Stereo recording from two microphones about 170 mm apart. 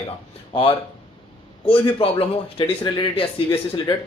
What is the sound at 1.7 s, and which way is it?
A man's voice, 30° left (ahead or behind).